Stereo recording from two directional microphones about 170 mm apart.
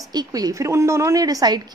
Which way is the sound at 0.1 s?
25° right (ahead or behind).